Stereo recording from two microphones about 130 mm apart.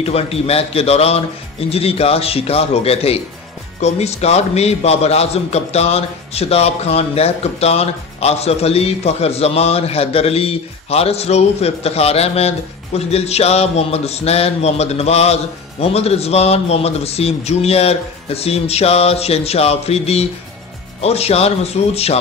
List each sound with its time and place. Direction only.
0.0 s a man's voice: 50° left (ahead or behind)